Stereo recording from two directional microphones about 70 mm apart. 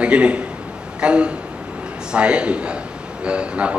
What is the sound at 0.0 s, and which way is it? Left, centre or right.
A man's voice, centre.